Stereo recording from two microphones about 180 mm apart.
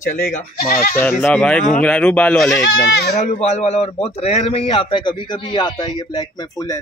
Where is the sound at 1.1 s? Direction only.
10° left (ahead or behind).